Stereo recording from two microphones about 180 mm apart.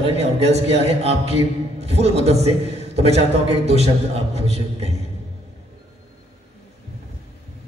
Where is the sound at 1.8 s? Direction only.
35° right (ahead or behind).